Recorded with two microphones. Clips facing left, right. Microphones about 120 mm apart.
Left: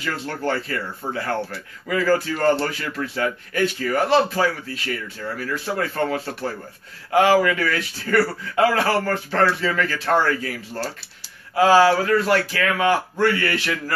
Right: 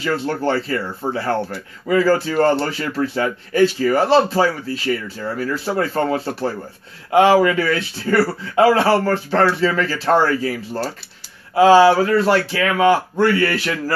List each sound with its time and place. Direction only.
0.0 s speech: 30° right (ahead or behind)